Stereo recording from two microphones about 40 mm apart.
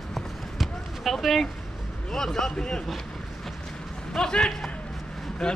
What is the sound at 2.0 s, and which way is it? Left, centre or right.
Speech, centre.